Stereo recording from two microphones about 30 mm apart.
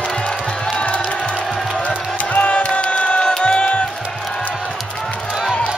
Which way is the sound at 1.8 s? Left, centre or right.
Left.